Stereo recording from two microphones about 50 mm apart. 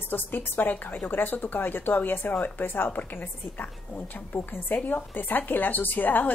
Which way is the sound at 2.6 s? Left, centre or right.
Left.